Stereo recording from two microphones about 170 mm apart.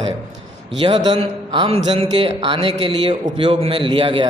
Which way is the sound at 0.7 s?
30° right (ahead or behind).